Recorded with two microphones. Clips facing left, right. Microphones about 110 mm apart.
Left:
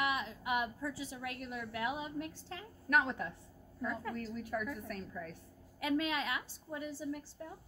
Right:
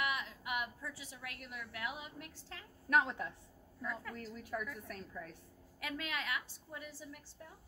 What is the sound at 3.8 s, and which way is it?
Speech, 30° left (ahead or behind).